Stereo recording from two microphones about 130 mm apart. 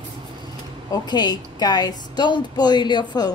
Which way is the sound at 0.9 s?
30° left (ahead or behind).